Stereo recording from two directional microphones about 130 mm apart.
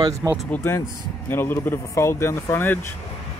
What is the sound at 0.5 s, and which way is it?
Speech, 15° left (ahead or behind).